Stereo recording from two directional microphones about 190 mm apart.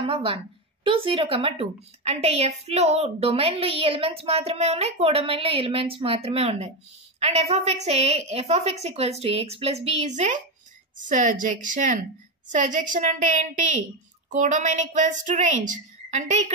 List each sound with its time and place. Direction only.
0.0 s a woman's voice: 30° right (ahead or behind)